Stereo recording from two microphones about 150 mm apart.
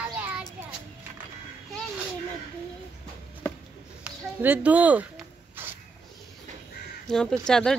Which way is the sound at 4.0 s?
10° right (ahead or behind).